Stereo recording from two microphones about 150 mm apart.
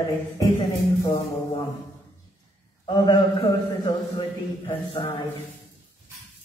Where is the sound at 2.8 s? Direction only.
25° left (ahead or behind).